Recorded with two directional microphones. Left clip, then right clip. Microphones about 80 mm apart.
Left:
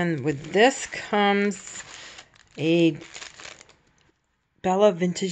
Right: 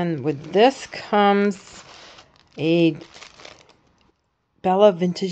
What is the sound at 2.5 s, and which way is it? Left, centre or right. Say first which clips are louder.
Crumpling: right 2 dB; right.